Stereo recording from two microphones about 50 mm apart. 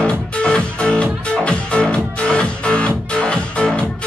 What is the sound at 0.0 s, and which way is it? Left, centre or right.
Music, left.